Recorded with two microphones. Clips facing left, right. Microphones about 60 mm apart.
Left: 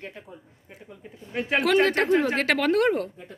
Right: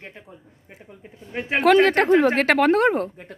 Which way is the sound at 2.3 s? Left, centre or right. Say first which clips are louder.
Right 5 dB; right.